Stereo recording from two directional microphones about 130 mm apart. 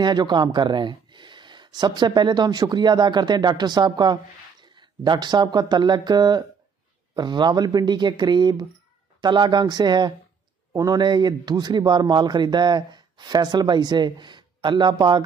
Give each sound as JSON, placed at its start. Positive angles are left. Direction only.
{"t": 0.0, "sound": "a man's voice", "side_deg": -35}